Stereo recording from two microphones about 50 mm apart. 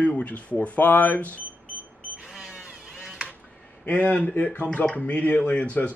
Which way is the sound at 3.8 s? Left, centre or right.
Left.